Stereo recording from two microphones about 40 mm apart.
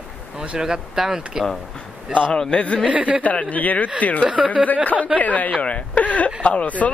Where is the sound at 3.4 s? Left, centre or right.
Left.